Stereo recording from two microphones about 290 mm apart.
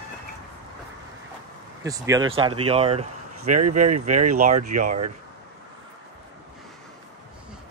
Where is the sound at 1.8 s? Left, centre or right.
Centre.